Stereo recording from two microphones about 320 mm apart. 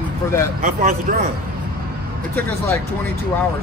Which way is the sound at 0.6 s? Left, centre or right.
Right.